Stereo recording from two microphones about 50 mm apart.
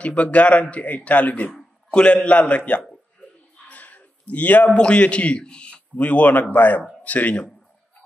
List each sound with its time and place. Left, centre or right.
0.0 s a man's voice: left
1.9 s a man's voice: centre